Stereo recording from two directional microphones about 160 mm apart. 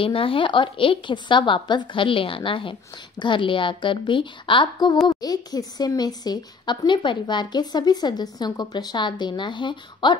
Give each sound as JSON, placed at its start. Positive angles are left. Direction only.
{"t": 0.0, "sound": "a woman's voice", "side_deg": 35}